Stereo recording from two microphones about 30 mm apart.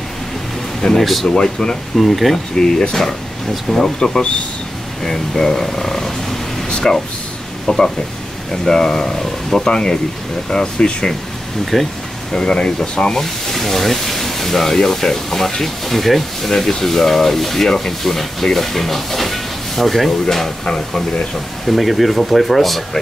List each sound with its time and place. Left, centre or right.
0.9 s speech: centre
1.2 s speech: left
2.0 s speech: centre
2.5 s speech: centre
5.0 s speech: centre
6.8 s speech: left
11.6 s speech: centre
12.3 s speech: left
13.1 s speech: centre
20.6 s speech: left
21.6 s speech: centre